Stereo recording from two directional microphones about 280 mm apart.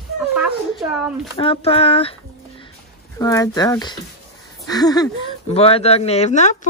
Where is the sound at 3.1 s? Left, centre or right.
Centre.